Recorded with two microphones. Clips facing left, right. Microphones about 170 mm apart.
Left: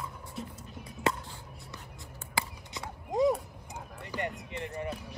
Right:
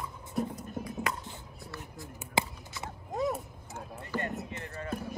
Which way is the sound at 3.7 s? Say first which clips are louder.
Right 4 dB; 15° left (ahead or behind).